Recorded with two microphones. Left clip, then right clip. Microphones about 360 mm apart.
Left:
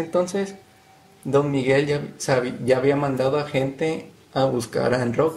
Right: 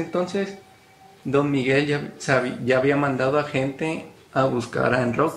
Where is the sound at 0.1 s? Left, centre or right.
Centre.